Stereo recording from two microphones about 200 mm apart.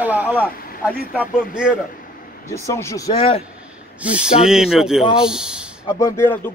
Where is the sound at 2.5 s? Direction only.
15° left (ahead or behind).